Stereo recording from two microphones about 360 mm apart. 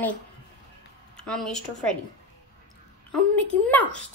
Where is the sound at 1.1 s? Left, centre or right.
Centre.